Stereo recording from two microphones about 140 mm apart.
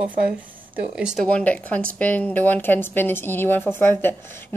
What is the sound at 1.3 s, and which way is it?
Speech, 10° left (ahead or behind).